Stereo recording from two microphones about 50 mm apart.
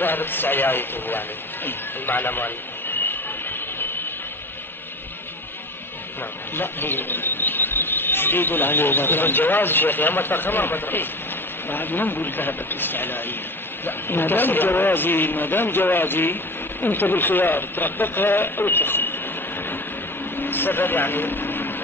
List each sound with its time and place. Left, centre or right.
0.0 s speech: left
6.5 s speech: left
20.3 s vehicle: left